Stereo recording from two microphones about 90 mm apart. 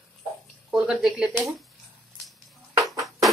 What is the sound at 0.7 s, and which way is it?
Speech, 5° right (ahead or behind).